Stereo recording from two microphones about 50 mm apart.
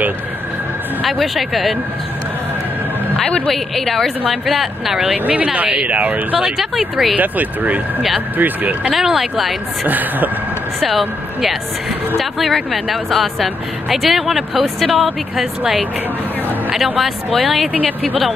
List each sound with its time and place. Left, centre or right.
1.0 s speech: centre
3.5 s speech: centre
5.2 s speech: right
6.4 s speech: centre
7.2 s speech: right
8.9 s speech: centre
9.8 s speech: right
10.8 s speech: centre
16.7 s speech: centre